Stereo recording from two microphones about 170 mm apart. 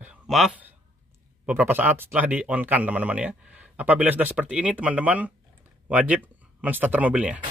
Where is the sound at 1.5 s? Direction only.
10° right (ahead or behind).